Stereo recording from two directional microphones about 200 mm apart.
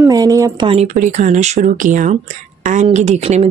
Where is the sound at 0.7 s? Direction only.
35° right (ahead or behind).